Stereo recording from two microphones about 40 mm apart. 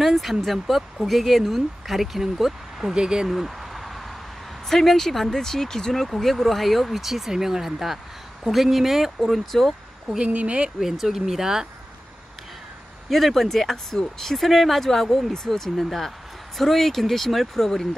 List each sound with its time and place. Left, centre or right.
0.0 s speech: centre
2.9 s speech: right
3.3 s a sound: centre
4.6 s speech: centre
9.2 s speech: centre
10.0 s speech: right
10.8 s speech: centre
13.1 s speech: centre